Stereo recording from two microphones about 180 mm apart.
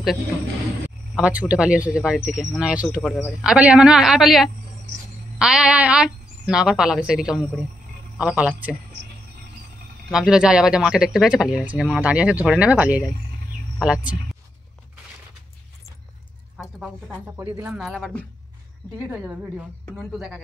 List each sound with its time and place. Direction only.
1.1 s a man's voice: 5° right (ahead or behind)
10.1 s speech: 5° right (ahead or behind)
16.5 s speech: 5° right (ahead or behind)
17.7 s speech: centre (ahead or behind)
19.9 s speech: centre (ahead or behind)